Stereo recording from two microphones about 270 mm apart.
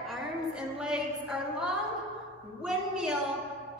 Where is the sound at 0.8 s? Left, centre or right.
Centre.